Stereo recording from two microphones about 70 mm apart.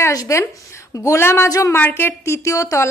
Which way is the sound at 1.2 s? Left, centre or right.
Left.